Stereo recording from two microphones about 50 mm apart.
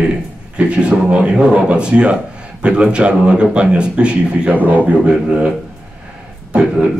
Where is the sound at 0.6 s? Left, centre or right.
Right.